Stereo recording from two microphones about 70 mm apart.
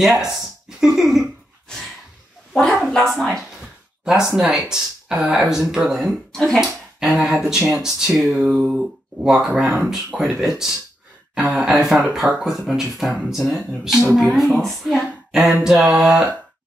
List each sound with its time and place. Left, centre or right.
0.0 s speech: centre
2.9 s speech: centre
6.3 s speech: centre
8.4 s speech: centre
8.6 s speech: centre